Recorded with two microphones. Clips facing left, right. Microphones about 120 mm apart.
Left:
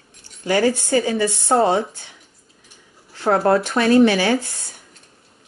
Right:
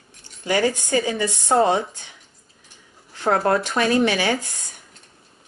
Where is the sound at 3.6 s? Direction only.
15° right (ahead or behind).